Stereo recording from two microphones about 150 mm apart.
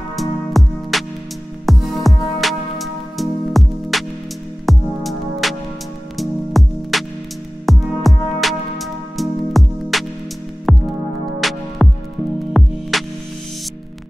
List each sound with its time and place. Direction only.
0.1 s music: centre (ahead or behind)